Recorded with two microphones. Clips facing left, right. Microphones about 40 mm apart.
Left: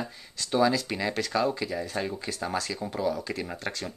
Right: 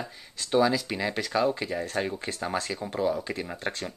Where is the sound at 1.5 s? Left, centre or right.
Right.